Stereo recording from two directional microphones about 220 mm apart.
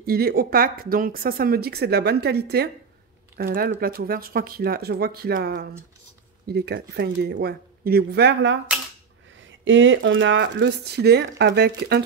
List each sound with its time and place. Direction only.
0.0 s speech: 45° right (ahead or behind)